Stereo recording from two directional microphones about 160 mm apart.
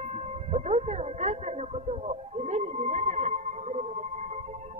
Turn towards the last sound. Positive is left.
turn(degrees=-45)  # may be behind; listen again after turning